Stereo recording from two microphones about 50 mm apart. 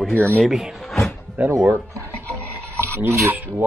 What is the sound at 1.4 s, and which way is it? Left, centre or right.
Speech, right.